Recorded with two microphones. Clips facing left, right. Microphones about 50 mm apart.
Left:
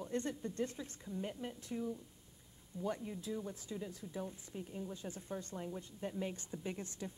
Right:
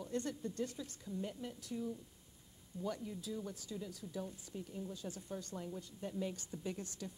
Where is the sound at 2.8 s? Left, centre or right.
Left.